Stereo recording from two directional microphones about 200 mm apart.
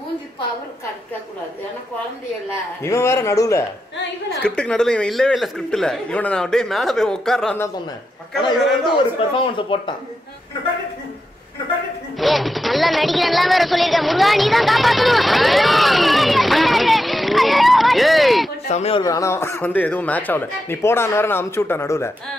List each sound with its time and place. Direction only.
2.8 s speech: 15° left (ahead or behind)
4.4 s a man's voice: 5° left (ahead or behind)
9.4 s speech: 25° left (ahead or behind)
12.2 s speech: centre (ahead or behind)
18.7 s speech: 30° left (ahead or behind); by 22.1 s 15° left (ahead or behind)